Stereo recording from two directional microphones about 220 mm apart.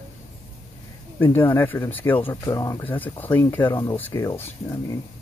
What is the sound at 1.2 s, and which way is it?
Speech, 10° left (ahead or behind).